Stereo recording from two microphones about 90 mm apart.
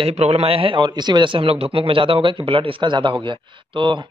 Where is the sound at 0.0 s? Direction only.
90° right.